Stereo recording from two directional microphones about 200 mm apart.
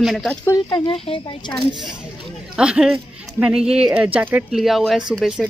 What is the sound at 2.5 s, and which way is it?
Speech, 5° right (ahead or behind).